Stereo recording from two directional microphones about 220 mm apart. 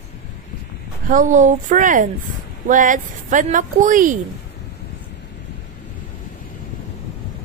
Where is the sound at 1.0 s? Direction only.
35° right (ahead or behind).